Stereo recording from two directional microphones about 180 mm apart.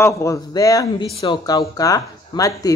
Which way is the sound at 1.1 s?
30° left (ahead or behind).